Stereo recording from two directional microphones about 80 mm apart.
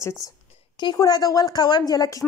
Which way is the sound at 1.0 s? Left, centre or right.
Left.